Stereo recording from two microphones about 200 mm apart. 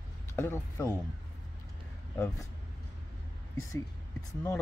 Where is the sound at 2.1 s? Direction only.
15° left (ahead or behind).